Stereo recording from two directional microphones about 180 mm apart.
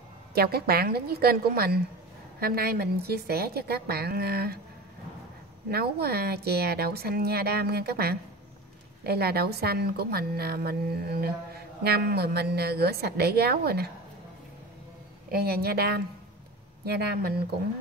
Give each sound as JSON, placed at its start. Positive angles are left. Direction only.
{"t": 0.3, "sound": "a woman's voice", "side_deg": -60}
{"t": 5.7, "sound": "a woman's voice", "side_deg": -60}
{"t": 15.3, "sound": "a woman's voice", "side_deg": -60}